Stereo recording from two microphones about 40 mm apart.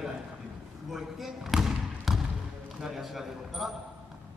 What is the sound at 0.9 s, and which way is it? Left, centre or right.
Basketball bounce, centre.